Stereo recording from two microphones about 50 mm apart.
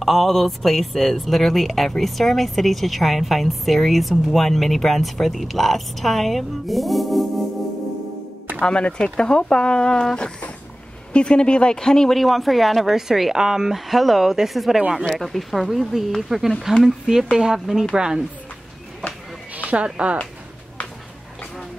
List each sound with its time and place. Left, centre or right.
0.0 s speech: centre
8.6 s speech: centre
12.2 s speech: centre
19.7 s speech: right